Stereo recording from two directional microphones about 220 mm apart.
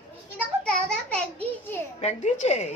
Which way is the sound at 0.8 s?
5° left (ahead or behind).